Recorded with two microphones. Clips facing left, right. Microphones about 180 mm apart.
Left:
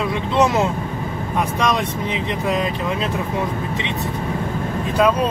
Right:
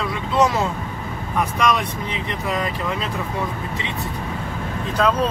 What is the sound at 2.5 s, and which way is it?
Speech, 20° left (ahead or behind).